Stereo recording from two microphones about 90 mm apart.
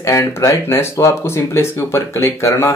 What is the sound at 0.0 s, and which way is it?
Speech, 35° left (ahead or behind).